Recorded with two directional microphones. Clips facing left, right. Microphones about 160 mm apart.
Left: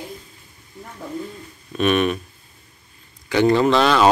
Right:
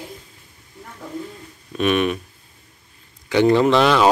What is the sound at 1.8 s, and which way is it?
Speech, 10° right (ahead or behind).